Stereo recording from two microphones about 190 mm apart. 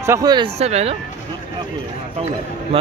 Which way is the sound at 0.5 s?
35° right (ahead or behind).